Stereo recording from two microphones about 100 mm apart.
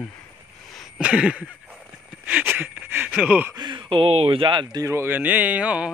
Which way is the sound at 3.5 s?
50° right (ahead or behind).